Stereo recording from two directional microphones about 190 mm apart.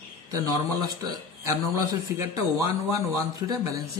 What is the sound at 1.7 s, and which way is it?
Speech, 15° right (ahead or behind).